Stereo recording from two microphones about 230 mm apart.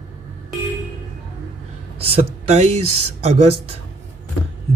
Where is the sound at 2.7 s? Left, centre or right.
Right.